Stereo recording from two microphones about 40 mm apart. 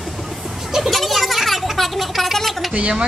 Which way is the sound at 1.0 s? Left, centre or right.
Centre.